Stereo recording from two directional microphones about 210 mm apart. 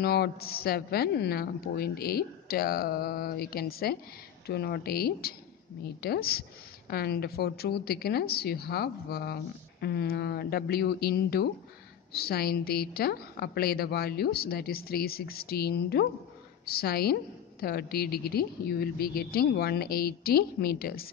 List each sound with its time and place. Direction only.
0.0 s a woman's voice: 50° left (ahead or behind)